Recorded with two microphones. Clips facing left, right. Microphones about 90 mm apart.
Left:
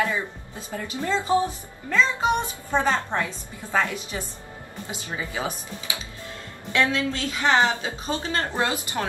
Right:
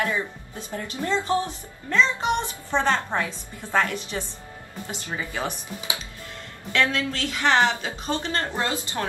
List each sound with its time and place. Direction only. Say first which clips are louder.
0.7 s a woman's voice: even; 15° left (ahead or behind)
6.7 s a woman's voice: left 1 dB; 10° left (ahead or behind)